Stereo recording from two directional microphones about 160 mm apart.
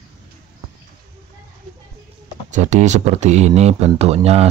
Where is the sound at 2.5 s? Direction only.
50° right (ahead or behind).